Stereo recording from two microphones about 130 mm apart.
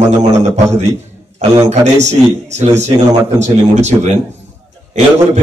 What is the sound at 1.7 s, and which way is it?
A man's voice, 60° right (ahead or behind).